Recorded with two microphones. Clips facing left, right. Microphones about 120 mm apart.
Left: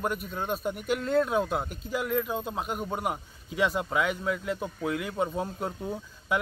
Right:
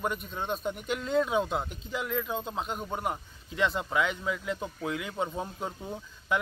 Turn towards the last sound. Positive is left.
turn(degrees=5)  # may be behind; listen again after turning